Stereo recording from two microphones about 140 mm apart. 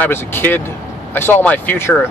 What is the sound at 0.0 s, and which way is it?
Speech, 15° left (ahead or behind).